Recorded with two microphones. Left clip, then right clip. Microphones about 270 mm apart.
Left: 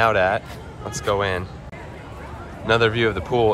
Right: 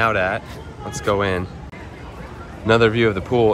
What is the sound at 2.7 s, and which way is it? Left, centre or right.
Speech, centre.